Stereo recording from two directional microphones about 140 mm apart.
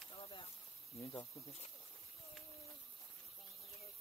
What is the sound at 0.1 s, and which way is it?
Snake, 40° left (ahead or behind).